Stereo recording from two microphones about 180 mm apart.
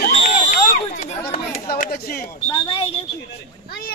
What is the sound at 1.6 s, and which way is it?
Speech, 55° left (ahead or behind).